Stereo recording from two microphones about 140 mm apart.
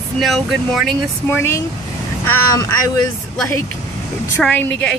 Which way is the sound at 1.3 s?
15° left (ahead or behind).